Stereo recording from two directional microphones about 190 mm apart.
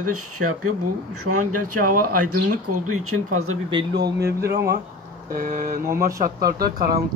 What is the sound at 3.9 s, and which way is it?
Speech, 60° right (ahead or behind).